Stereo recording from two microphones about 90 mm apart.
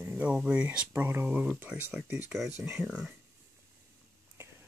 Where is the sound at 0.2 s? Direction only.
15° right (ahead or behind).